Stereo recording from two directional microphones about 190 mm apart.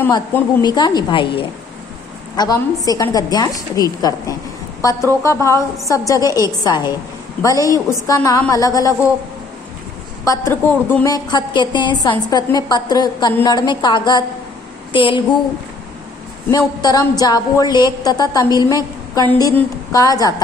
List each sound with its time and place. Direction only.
0.6 s a woman's voice: 20° left (ahead or behind)
10.2 s a woman's voice: 15° left (ahead or behind)
11.1 s a woman's voice: 20° left (ahead or behind)
16.4 s a woman's voice: 20° left (ahead or behind)